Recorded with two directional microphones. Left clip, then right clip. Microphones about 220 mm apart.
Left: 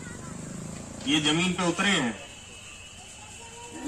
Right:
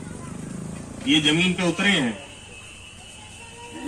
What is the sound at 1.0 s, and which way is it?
A man's voice, 30° left (ahead or behind).